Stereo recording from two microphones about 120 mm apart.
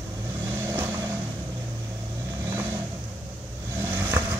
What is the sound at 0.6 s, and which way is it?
Vehicle, 20° right (ahead or behind).